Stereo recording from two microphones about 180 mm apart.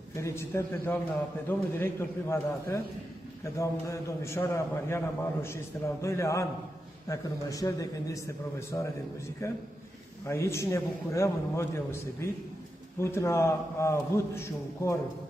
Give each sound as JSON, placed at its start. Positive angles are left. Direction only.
{"t": 0.1, "sound": "a man's voice", "side_deg": 15}